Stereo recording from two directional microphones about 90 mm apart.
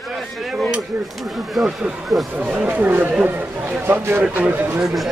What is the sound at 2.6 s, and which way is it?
A man's voice, 20° right (ahead or behind).